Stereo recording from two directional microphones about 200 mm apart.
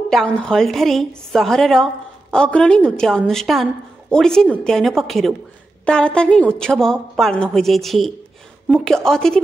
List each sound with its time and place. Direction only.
0.1 s a woman's voice: 5° left (ahead or behind)